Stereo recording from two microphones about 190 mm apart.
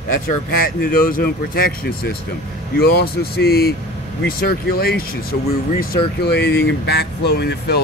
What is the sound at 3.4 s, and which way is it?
Speech, 55° left (ahead or behind).